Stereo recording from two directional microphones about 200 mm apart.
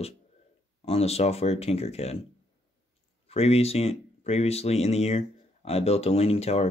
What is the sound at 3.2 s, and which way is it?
Speech, 30° left (ahead or behind).